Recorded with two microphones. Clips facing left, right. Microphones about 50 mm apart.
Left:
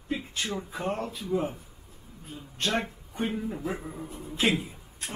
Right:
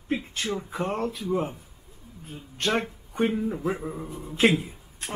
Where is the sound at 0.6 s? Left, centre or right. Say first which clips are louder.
Right 2 dB; right.